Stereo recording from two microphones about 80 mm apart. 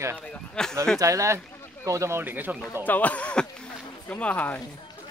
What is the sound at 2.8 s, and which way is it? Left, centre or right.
Speech, left.